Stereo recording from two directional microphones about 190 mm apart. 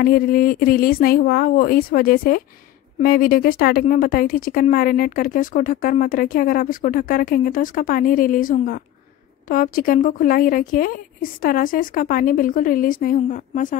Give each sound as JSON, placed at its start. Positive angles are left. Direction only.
{"t": 0.0, "sound": "a woman's voice", "side_deg": 50}